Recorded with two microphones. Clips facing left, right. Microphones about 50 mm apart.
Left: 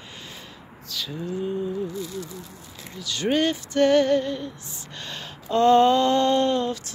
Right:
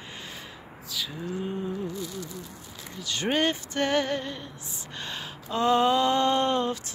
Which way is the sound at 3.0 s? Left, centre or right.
Right.